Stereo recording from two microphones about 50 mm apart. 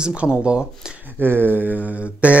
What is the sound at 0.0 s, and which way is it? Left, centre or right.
Speech, right.